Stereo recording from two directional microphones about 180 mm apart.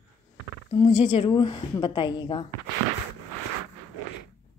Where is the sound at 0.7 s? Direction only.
35° left (ahead or behind).